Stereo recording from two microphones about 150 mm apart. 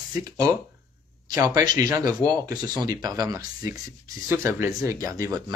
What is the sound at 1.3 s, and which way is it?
Speech, 20° right (ahead or behind).